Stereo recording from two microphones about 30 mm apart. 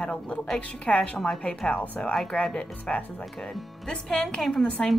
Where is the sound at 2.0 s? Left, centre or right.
Left.